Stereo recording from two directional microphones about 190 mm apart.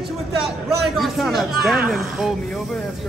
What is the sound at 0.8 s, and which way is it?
A man's voice, centre (ahead or behind).